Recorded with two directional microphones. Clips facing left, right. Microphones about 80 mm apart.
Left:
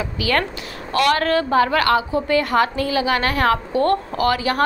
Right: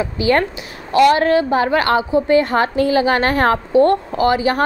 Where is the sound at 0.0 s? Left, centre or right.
Right.